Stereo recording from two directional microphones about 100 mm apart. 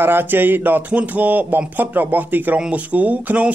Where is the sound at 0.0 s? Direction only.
20° right (ahead or behind).